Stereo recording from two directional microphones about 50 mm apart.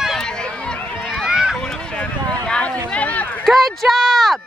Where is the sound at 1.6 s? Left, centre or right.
Centre.